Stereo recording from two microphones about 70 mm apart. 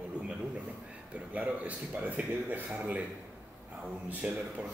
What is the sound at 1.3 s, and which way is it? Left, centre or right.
A man's voice, right.